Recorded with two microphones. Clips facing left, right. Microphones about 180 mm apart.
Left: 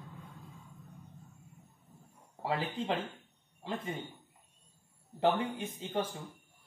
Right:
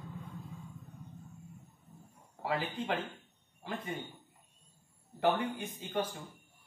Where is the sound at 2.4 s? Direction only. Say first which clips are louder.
Left 1 dB; 25° left (ahead or behind).